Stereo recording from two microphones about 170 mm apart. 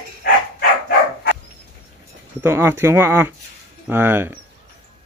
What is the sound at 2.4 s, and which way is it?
Speech, 15° right (ahead or behind).